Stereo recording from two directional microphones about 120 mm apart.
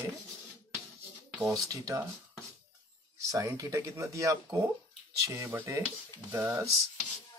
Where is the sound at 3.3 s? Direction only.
25° right (ahead or behind).